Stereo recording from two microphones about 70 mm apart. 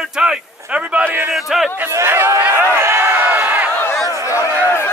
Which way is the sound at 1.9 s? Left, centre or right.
Right.